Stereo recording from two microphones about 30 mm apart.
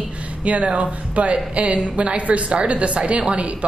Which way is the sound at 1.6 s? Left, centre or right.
Right.